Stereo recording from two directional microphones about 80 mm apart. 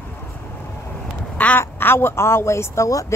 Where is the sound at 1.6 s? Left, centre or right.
Left.